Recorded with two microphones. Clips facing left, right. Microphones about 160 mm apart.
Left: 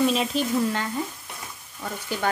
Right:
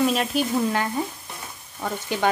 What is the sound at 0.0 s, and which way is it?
Speech, 5° right (ahead or behind).